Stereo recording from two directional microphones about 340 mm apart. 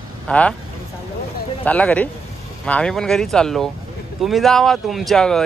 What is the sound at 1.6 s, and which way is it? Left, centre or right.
Speech, centre.